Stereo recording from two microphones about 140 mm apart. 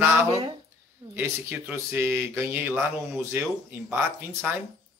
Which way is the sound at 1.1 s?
15° right (ahead or behind).